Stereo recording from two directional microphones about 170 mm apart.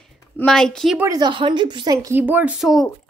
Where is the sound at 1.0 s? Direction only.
25° right (ahead or behind).